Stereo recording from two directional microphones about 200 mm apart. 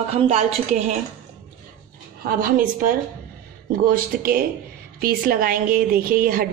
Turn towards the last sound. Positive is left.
turn(degrees=-45)  # may be behind; listen again after turning